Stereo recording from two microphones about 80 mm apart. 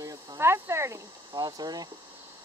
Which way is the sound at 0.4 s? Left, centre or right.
Right.